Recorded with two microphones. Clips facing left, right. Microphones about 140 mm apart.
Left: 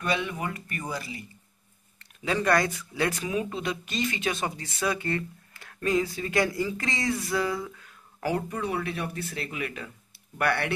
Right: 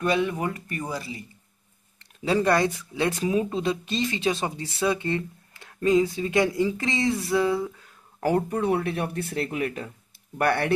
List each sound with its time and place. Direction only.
0.0 s speech: 40° right (ahead or behind)
2.2 s speech: 30° right (ahead or behind)
8.2 s speech: 45° right (ahead or behind)